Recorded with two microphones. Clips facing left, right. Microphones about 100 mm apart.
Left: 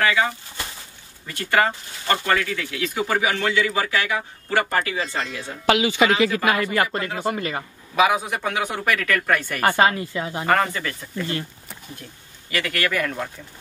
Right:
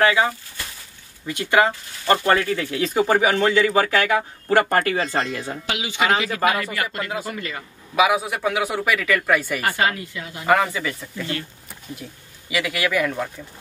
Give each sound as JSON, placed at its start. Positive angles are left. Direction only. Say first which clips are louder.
{"t": 0.0, "sound": "speech", "louder": "right 3 dB", "side_deg": -20}
{"t": 5.7, "sound": "speech", "louder": "left 8 dB", "side_deg": 50}
{"t": 6.0, "sound": "speech", "louder": "right 1 dB", "side_deg": -35}
{"t": 6.5, "sound": "speech", "louder": "left 4 dB", "side_deg": 35}
{"t": 7.9, "sound": "a man's voice", "louder": "even", "side_deg": -5}
{"t": 9.8, "sound": "speech", "louder": "left 4 dB", "side_deg": 30}
{"t": 10.4, "sound": "a man's voice", "louder": "right 2 dB", "side_deg": -5}